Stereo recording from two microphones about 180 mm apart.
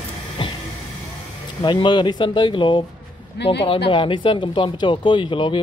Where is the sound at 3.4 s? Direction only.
70° left (ahead or behind).